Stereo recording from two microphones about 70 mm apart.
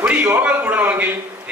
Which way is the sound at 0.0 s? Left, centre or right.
Right.